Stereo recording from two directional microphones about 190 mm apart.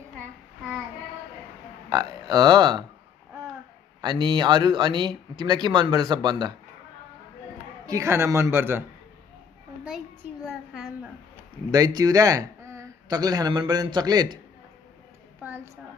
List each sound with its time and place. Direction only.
1.9 s speech: 20° right (ahead or behind)
4.0 s speech: 25° right (ahead or behind)
7.8 s a man's voice: 15° right (ahead or behind)
10.4 s a sound: centre (ahead or behind)
11.7 s speech: 20° right (ahead or behind)
15.4 s a sound: 15° right (ahead or behind)